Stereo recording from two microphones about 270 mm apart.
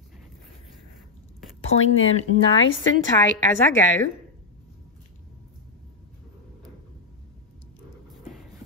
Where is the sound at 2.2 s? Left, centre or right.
Left.